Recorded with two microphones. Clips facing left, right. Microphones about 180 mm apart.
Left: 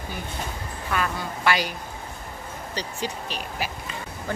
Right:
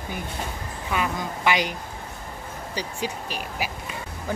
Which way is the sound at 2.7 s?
10° right (ahead or behind).